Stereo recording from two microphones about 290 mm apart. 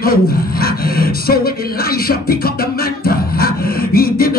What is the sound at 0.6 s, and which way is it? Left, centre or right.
Music, left.